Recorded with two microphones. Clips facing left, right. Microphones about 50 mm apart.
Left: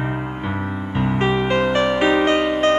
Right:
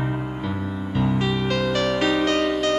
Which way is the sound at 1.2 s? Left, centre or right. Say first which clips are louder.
Left 5 dB; left.